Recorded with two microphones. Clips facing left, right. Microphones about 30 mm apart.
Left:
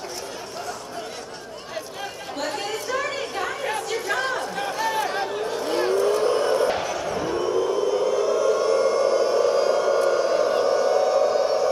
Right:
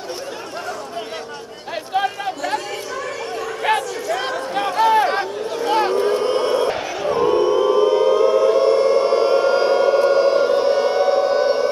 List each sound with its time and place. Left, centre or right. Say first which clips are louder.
2.0 s chatter: right 13 dB; right
4.2 s a sound: right 4 dB; right
7.0 s siren: right 8 dB; right